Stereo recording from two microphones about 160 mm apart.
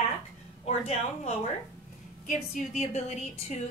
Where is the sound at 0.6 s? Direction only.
40° left (ahead or behind).